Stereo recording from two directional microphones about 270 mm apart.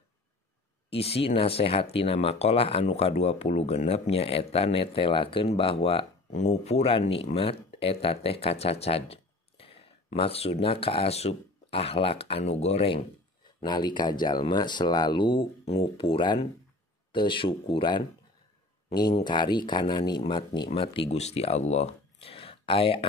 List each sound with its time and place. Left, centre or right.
0.8 s speech: left
19.1 s speech: centre